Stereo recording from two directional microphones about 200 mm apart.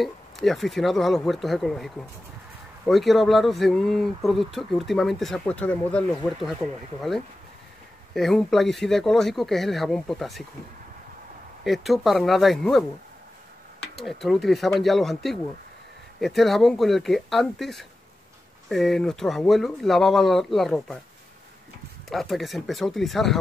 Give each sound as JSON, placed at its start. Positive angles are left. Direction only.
{"t": 0.0, "sound": "speech", "side_deg": 0}
{"t": 8.1, "sound": "speech", "side_deg": 0}
{"t": 11.6, "sound": "speech", "side_deg": 0}
{"t": 13.9, "sound": "speech", "side_deg": 0}
{"t": 22.1, "sound": "speech", "side_deg": 0}